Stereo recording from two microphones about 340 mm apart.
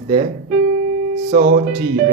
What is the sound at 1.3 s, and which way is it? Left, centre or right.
Speech, right.